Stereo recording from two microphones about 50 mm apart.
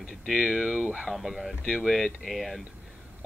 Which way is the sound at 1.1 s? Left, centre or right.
Centre.